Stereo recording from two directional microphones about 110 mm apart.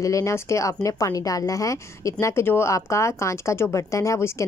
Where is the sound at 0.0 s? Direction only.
30° left (ahead or behind).